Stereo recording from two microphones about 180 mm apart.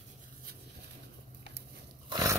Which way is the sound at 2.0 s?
20° right (ahead or behind).